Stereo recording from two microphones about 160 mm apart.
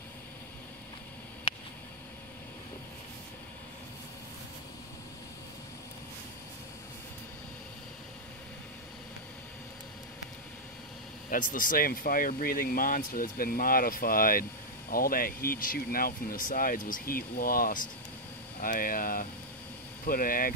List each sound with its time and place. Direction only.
11.2 s speech: 55° left (ahead or behind)